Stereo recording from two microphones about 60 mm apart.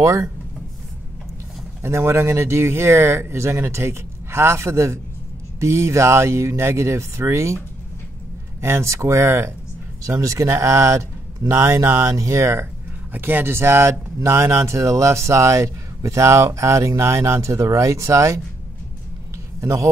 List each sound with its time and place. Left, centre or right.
0.0 s speech: right
1.8 s speech: right
8.5 s speech: right
10.0 s speech: right
13.1 s speech: right
19.6 s speech: right